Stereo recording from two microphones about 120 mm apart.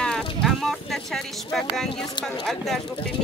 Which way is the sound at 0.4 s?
Centre (ahead or behind).